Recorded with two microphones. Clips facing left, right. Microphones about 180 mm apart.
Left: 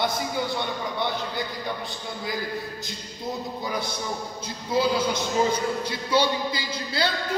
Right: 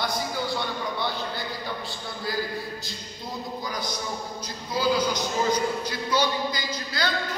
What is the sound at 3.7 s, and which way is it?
A man's voice, 25° left (ahead or behind).